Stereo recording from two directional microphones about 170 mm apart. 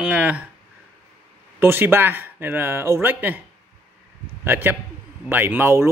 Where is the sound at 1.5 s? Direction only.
15° right (ahead or behind).